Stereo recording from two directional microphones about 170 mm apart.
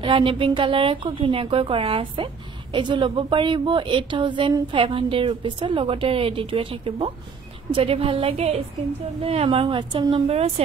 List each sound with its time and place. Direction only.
0.0 s a woman's voice: 30° right (ahead or behind)